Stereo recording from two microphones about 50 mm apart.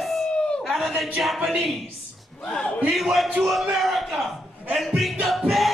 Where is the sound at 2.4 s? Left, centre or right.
Centre.